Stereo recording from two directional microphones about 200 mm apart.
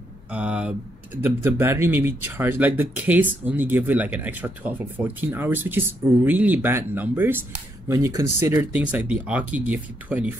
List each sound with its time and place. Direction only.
0.3 s speech: 5° right (ahead or behind)